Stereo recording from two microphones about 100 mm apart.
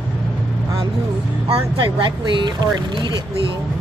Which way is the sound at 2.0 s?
50° right (ahead or behind).